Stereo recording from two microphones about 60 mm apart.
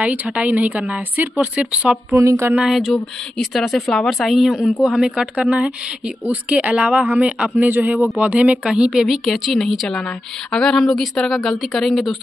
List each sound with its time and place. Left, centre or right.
0.0 s speech: right
2.1 s a sound: right
2.6 s speech: centre
9.0 s speech: centre